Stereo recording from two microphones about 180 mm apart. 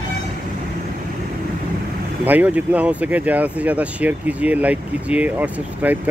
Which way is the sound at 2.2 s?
10° right (ahead or behind).